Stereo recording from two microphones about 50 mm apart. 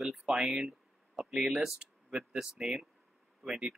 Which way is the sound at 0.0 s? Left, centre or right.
Centre.